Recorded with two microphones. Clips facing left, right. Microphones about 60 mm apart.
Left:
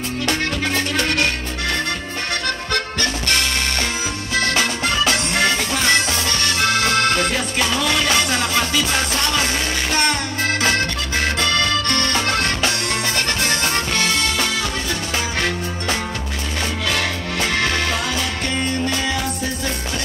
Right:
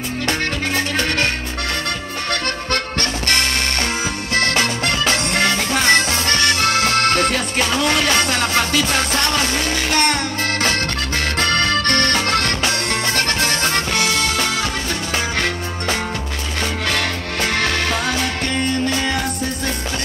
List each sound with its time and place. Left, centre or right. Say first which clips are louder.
0.9 s music: even; right
4.3 s music: right 1 dB; right
9.8 s music: right 2 dB; right
11.3 s accordion: right 4 dB; right
13.1 s music: right 2 dB; right
16.8 s music: left 1 dB; right